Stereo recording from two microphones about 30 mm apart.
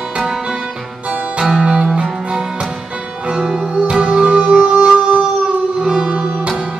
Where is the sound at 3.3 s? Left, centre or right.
Centre; by 6.5 s right.